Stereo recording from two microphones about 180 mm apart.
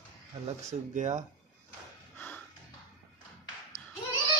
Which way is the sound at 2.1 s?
10° left (ahead or behind).